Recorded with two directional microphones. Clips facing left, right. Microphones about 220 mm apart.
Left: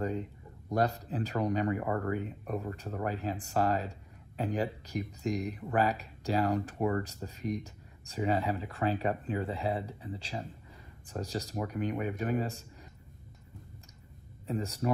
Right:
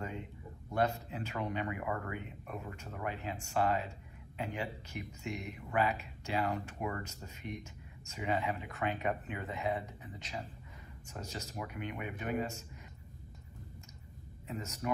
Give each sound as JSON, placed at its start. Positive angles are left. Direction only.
{"t": 0.7, "sound": "speech", "side_deg": 35}
{"t": 14.5, "sound": "speech", "side_deg": 30}